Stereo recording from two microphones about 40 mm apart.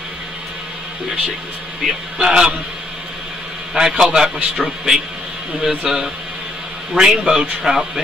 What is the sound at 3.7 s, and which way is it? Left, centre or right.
A man's voice, centre.